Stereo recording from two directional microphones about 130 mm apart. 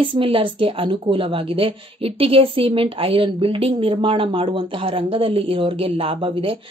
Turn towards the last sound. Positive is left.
turn(degrees=-45)  # may be behind; listen again after turning